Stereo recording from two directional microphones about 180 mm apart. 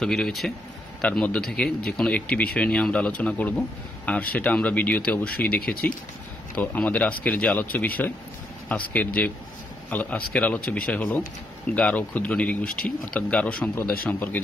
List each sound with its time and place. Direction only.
0.0 s speech: centre (ahead or behind)
12.6 s speech: 50° left (ahead or behind)
13.1 s speech: 5° left (ahead or behind)